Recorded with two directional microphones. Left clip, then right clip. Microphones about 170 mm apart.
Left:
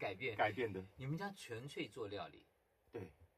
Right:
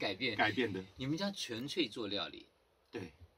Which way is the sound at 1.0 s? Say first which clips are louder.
Right 11 dB; centre (ahead or behind).